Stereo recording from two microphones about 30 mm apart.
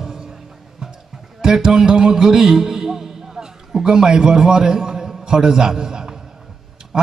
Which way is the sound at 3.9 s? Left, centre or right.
Right.